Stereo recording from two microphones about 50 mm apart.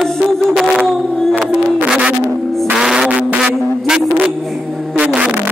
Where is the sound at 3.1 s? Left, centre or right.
Right.